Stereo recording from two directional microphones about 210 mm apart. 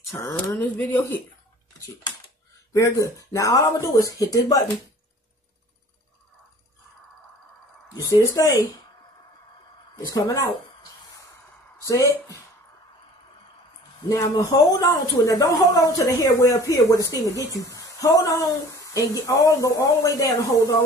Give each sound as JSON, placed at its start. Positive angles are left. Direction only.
{"t": 0.1, "sound": "a woman's voice", "side_deg": 15}
{"t": 2.7, "sound": "a woman's voice", "side_deg": 15}
{"t": 8.4, "sound": "a woman's voice", "side_deg": 15}
{"t": 10.1, "sound": "a woman's voice", "side_deg": 15}
{"t": 14.0, "sound": "a woman's voice", "side_deg": 15}